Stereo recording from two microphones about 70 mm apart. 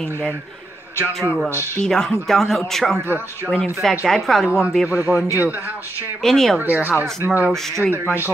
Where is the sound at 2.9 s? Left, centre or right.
Right.